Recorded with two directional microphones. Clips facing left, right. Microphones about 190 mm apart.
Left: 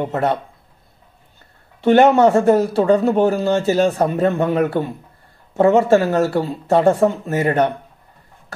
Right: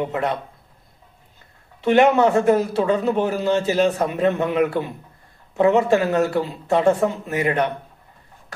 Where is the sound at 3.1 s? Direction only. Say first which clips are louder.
Left 4 dB; 35° left (ahead or behind).